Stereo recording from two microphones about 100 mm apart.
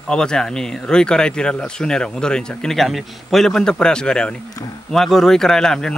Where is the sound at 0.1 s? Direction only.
5° left (ahead or behind).